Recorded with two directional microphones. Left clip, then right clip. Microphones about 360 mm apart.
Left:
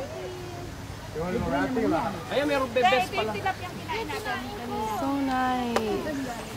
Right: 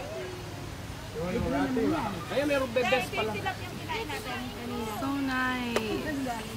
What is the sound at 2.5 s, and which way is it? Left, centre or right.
Speech, centre.